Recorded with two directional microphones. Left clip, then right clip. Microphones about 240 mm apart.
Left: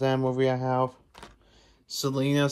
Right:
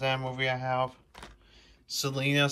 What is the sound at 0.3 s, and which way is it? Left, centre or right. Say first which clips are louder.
Speech: left 4 dB; left.